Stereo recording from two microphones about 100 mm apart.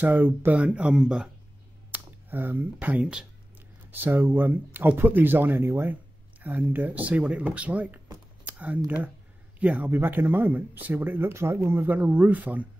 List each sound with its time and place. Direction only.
0.0 s speech: 15° right (ahead or behind)
1.9 s speech: 20° right (ahead or behind)
3.9 s speech: 20° right (ahead or behind)